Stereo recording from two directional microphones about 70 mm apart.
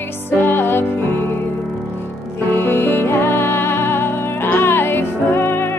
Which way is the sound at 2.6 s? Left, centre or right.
Left.